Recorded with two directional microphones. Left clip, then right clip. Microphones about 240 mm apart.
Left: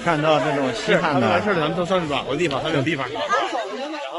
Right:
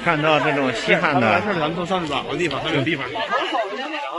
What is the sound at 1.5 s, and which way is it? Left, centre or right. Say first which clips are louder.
Speech: left 1 dB; left.